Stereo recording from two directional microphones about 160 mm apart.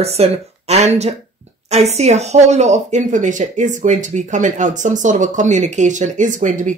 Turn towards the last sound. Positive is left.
turn(degrees=-55)  # may be behind; listen again after turning